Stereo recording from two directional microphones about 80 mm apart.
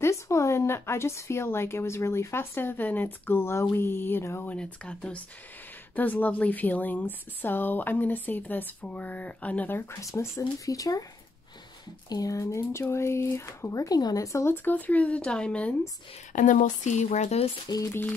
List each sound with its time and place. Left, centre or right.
0.0 s a woman's voice: left
4.5 s a woman's voice: centre
9.9 s speech: left
12.1 s speech: left
13.8 s speech: left
14.5 s speech: left
17.6 s speech: left